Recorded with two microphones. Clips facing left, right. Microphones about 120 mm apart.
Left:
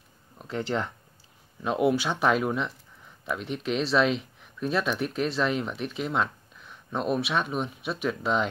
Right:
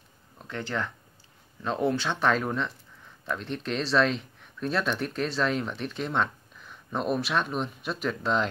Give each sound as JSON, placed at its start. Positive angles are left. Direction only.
{"t": 0.4, "sound": "a sound", "side_deg": 10}
{"t": 0.7, "sound": "speech", "side_deg": 25}
{"t": 1.6, "sound": "speech", "side_deg": 10}